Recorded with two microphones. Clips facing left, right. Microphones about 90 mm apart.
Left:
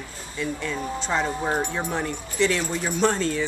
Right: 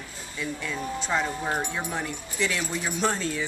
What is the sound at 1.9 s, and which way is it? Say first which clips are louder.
Speech: left 4 dB; 5° right (ahead or behind).